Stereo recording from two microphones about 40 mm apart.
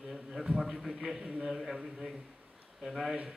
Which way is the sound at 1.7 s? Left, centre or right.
Centre.